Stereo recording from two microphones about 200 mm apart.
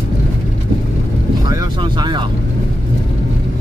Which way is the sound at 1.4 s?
20° right (ahead or behind).